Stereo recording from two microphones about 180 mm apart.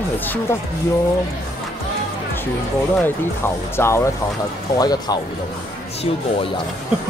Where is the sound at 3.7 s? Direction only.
15° left (ahead or behind).